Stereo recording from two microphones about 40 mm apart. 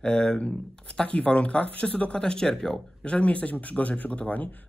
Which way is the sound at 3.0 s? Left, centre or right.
Left.